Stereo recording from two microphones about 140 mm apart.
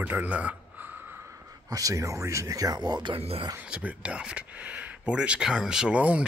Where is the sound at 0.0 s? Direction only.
10° right (ahead or behind); by 3.4 s 40° right (ahead or behind).